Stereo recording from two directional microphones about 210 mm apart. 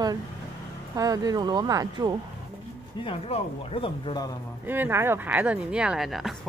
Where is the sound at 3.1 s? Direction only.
25° left (ahead or behind).